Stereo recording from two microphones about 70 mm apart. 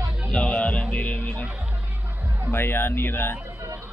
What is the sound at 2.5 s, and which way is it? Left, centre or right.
Speech, left.